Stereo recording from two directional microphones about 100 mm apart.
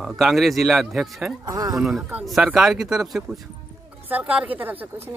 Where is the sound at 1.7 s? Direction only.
5° right (ahead or behind).